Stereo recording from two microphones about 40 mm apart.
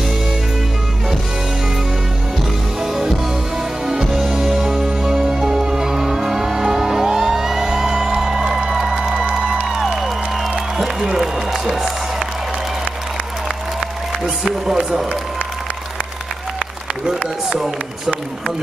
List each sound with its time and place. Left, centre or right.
2.8 s music: centre
8.9 s music: right
9.7 s music: centre
14.4 s music: centre
17.0 s run: centre